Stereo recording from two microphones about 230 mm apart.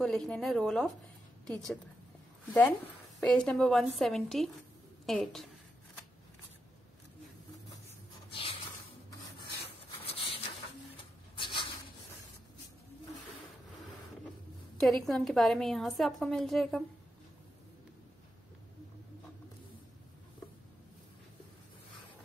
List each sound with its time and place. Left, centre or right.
0.0 s a woman's voice: centre
3.2 s a woman's voice: centre
8.3 s a sound: left
9.8 s rub: left
11.3 s a sound: left
14.8 s a woman's voice: centre